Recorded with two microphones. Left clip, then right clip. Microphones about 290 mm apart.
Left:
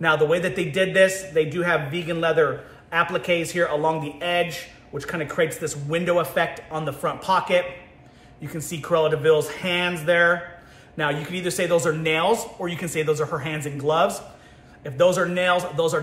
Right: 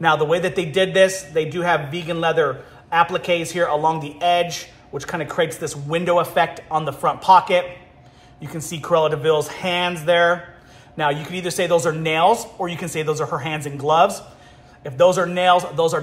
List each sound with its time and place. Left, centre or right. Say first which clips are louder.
0.0 s a man's voice: right 2 dB; centre